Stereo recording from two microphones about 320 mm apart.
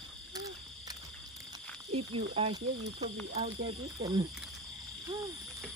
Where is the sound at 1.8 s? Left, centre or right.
Centre.